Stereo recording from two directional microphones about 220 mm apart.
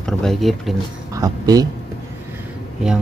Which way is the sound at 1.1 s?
15° right (ahead or behind).